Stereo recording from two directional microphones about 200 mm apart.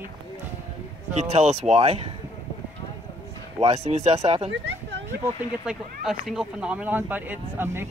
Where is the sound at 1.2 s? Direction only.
35° right (ahead or behind).